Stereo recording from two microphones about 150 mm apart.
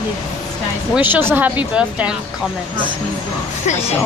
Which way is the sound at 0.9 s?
10° right (ahead or behind).